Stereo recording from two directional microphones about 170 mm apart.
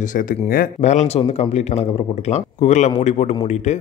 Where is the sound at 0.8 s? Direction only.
40° left (ahead or behind).